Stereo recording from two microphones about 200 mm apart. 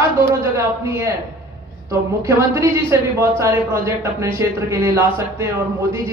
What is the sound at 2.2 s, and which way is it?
Speech, 15° right (ahead or behind).